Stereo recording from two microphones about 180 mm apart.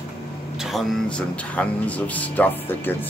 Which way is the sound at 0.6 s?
Centre (ahead or behind).